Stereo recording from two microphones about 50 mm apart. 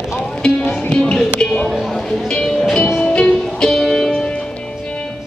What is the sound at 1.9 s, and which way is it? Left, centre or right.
Music, centre.